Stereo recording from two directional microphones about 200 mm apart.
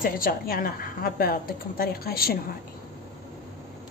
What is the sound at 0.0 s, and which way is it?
A woman's voice, 45° left (ahead or behind).